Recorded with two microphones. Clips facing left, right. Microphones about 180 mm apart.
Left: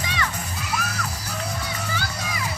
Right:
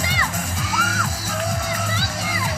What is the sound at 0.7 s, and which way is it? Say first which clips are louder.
Music: right 1 dB; 90° right.